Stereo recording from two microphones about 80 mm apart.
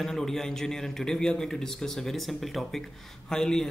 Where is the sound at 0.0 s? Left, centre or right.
Centre.